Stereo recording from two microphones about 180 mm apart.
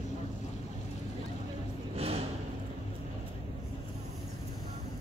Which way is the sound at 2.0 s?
35° right (ahead or behind).